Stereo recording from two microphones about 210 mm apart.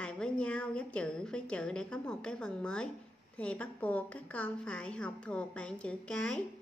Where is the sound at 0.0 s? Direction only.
5° left (ahead or behind).